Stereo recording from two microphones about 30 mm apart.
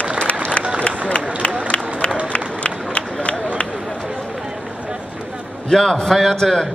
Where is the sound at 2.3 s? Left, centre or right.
Left.